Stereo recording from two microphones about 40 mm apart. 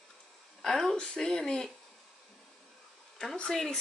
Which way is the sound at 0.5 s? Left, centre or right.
Centre.